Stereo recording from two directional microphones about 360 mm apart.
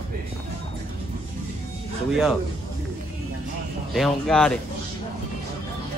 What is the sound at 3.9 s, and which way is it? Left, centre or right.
Speech, centre.